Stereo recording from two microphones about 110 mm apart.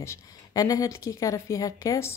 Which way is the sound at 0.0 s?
30° left (ahead or behind).